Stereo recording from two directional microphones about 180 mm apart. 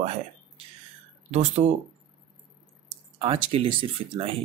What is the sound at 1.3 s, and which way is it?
Speech, 35° right (ahead or behind).